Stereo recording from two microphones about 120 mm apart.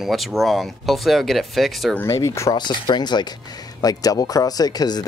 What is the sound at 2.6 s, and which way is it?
Speech, 40° left (ahead or behind).